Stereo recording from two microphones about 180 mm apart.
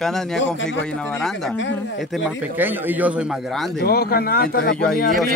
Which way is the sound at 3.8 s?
60° left (ahead or behind).